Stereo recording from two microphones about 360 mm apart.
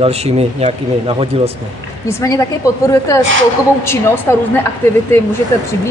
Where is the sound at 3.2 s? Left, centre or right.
Right.